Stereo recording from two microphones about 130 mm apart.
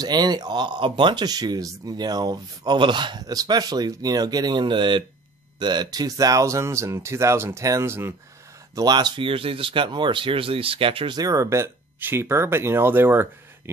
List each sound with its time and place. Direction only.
0.0 s speech: 30° right (ahead or behind)
8.7 s speech: 30° right (ahead or behind)
11.1 s speech: 25° right (ahead or behind)